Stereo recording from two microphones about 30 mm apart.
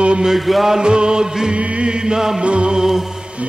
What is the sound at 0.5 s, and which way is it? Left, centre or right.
Music, centre.